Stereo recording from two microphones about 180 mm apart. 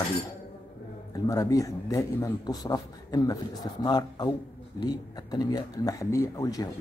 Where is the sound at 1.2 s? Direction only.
20° left (ahead or behind).